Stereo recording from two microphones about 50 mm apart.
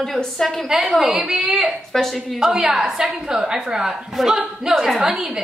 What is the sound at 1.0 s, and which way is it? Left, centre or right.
Speech, centre.